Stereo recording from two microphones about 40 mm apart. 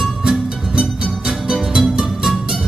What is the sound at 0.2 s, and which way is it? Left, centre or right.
Music, centre.